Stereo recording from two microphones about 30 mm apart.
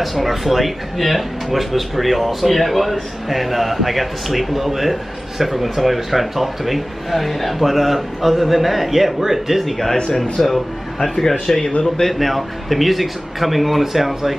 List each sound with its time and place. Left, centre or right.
0.0 s speech: centre
10.4 s a man's voice: centre
12.1 s speech: centre